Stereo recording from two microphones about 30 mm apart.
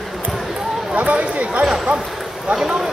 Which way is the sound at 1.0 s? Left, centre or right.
Right.